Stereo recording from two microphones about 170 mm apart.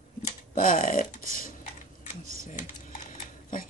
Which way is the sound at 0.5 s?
55° left (ahead or behind).